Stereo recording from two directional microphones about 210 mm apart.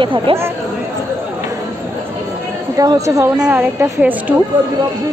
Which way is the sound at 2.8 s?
15° right (ahead or behind).